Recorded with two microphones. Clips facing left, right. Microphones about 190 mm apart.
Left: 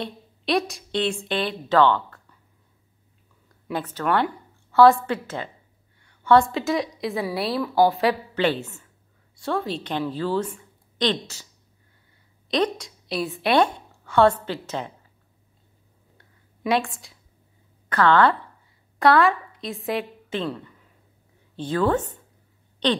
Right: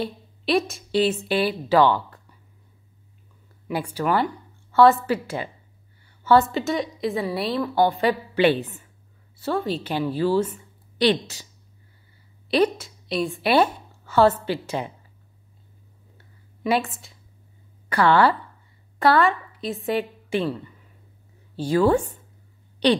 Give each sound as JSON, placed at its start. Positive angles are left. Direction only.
{"t": 0.0, "sound": "a woman's voice", "side_deg": 0}
{"t": 3.6, "sound": "a woman's voice", "side_deg": -10}
{"t": 8.4, "sound": "a woman's voice", "side_deg": -15}
{"t": 9.4, "sound": "a woman's voice", "side_deg": 0}
{"t": 12.4, "sound": "a woman's voice", "side_deg": -5}
{"t": 16.2, "sound": "a sound", "side_deg": -5}
{"t": 17.8, "sound": "speech", "side_deg": -10}
{"t": 18.9, "sound": "a woman's voice", "side_deg": 0}